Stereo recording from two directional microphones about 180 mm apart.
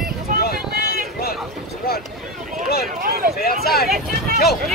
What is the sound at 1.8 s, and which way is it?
Boat, 55° left (ahead or behind).